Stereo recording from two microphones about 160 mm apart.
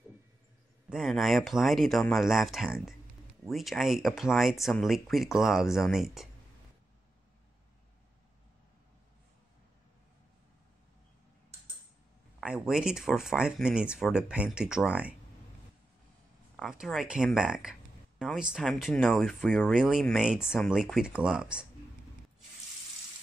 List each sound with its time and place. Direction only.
0.8 s speech: centre (ahead or behind)
12.4 s speech: 5° right (ahead or behind)
16.5 s speech: centre (ahead or behind)